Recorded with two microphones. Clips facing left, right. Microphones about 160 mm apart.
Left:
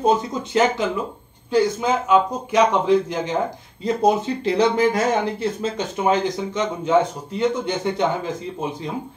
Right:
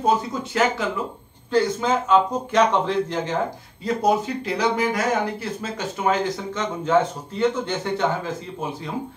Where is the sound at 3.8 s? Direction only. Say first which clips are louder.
Left 2 dB; 25° left (ahead or behind).